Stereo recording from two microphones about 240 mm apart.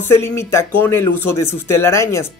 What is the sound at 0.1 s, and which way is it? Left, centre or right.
Speech, centre.